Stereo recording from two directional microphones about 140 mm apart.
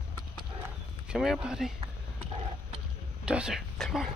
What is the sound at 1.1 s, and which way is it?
Speech, 5° right (ahead or behind).